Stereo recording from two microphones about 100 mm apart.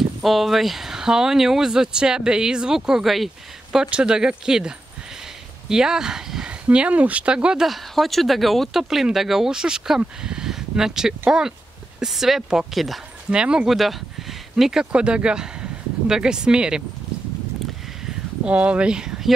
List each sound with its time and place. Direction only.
0.2 s speech: centre (ahead or behind)
18.4 s speech: 10° right (ahead or behind)